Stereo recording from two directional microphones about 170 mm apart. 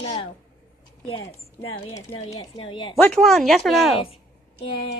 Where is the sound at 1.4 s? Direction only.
35° left (ahead or behind).